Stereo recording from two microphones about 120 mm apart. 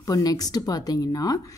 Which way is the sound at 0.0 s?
30° left (ahead or behind).